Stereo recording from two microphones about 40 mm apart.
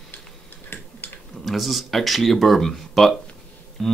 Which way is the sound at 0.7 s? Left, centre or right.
Left.